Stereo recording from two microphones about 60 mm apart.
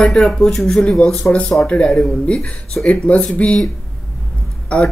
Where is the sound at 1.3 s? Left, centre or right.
Centre.